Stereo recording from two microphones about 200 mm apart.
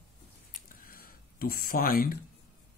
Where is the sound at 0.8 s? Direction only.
45° left (ahead or behind).